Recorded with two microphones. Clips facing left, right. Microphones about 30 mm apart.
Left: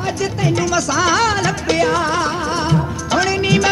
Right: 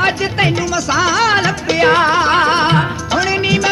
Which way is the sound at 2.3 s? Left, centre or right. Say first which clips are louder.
Right 7 dB; right.